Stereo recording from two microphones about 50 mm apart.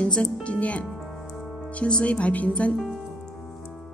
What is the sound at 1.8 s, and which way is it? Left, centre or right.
Speech, left.